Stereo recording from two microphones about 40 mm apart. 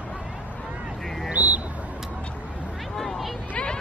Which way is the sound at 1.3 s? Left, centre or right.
Right.